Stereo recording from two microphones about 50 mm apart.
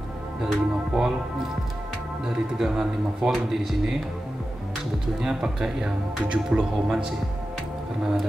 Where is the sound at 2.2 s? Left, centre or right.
Centre.